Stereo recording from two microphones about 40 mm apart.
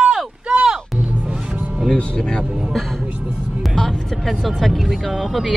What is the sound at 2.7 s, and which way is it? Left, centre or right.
Music, centre.